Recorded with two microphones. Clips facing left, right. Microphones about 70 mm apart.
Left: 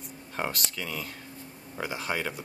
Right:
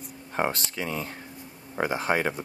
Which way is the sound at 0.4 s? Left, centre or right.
Right.